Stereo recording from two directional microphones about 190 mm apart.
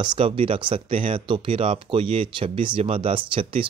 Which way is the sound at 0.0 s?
25° right (ahead or behind).